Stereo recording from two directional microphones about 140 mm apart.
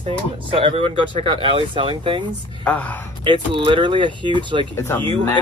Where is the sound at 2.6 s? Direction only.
10° left (ahead or behind).